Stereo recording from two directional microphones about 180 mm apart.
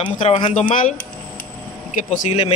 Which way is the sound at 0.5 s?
45° left (ahead or behind).